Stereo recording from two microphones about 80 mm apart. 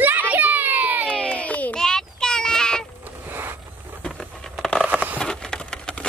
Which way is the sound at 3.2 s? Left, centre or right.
Right.